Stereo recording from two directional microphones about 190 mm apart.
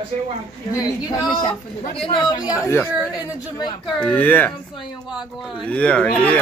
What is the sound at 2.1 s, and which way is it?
Speech, 25° left (ahead or behind).